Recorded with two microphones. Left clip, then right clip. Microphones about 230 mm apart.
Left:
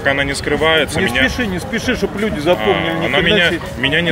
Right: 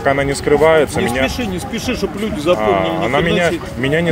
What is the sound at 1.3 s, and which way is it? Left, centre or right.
Speech, centre.